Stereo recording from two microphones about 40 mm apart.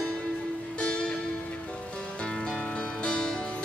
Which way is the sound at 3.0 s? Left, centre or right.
Left.